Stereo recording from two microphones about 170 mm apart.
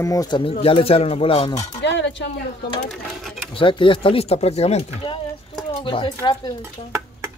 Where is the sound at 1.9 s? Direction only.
90° left.